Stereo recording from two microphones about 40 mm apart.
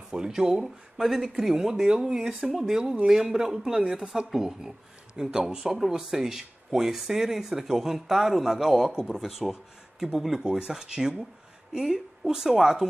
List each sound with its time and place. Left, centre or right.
0.1 s speech: centre